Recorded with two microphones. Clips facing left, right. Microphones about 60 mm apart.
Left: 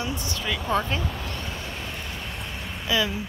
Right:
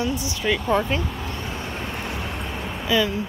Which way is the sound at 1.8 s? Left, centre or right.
Right.